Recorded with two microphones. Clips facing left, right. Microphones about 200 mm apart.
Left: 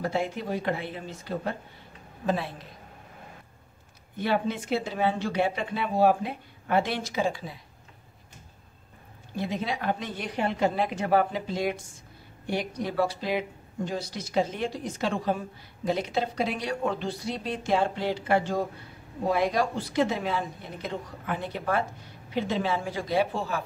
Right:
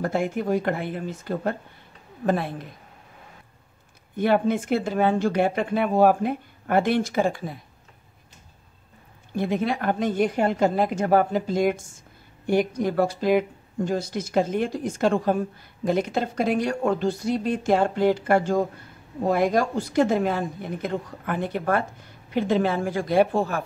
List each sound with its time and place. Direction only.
0.0 s speech: 50° right (ahead or behind)
4.2 s speech: 50° right (ahead or behind)
9.3 s speech: 55° right (ahead or behind)